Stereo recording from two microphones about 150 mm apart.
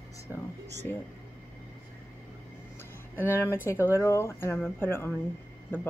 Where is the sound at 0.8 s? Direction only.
15° left (ahead or behind).